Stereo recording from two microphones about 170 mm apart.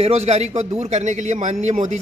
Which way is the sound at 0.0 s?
40° right (ahead or behind).